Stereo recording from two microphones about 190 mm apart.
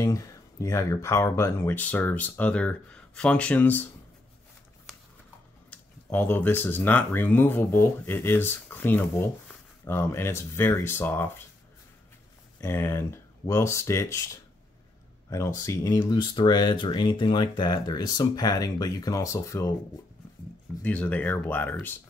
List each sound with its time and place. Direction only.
0.0 s speech: 15° left (ahead or behind)
6.1 s speech: 10° left (ahead or behind)
12.5 s speech: 15° left (ahead or behind)
20.8 s speech: 5° left (ahead or behind)